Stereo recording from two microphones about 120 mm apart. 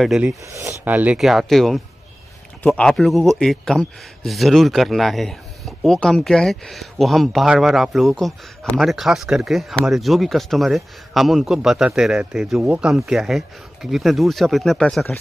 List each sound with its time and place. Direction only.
0.0 s speech: 5° right (ahead or behind)
0.5 s speech: 25° right (ahead or behind)
0.8 s speech: 15° right (ahead or behind)
1.2 s speech: centre (ahead or behind)